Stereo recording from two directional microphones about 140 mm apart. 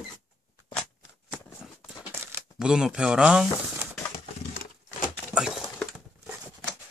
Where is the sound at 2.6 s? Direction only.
5° right (ahead or behind).